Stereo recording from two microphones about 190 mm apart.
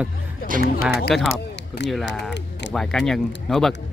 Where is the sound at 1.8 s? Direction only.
65° left (ahead or behind).